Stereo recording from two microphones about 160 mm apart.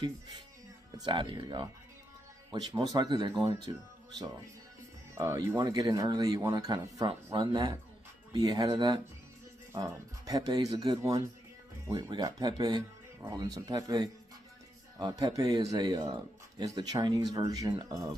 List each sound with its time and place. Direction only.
0.9 s a man's voice: 25° right (ahead or behind)
5.1 s a man's voice: 20° right (ahead or behind)